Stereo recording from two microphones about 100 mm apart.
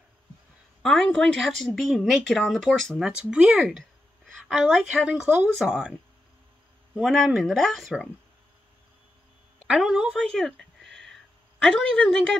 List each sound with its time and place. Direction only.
0.8 s speech: 5° left (ahead or behind)
3.1 s speech: 10° right (ahead or behind)
7.0 s speech: centre (ahead or behind)
9.7 s speech: 5° right (ahead or behind)
10.2 s a sound: 5° left (ahead or behind)
11.6 s speech: 10° left (ahead or behind)